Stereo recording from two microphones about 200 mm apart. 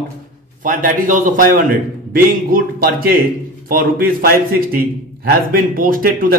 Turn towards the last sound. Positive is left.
turn(degrees=-45)  # may be behind; listen again after turning